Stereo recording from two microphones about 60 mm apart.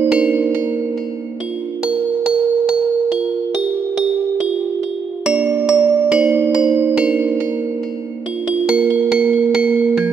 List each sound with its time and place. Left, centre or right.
0.0 s music: right
2.7 s music: centre
5.2 s music: right
8.6 s music: right